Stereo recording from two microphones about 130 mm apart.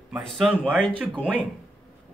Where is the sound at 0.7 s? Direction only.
10° right (ahead or behind).